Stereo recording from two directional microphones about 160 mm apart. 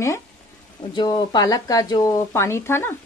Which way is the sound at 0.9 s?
30° left (ahead or behind).